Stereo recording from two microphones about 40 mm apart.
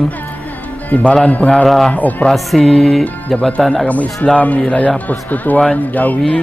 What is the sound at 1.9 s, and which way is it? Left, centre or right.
Speech, left.